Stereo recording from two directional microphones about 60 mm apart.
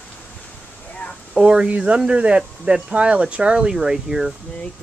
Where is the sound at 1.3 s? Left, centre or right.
Centre.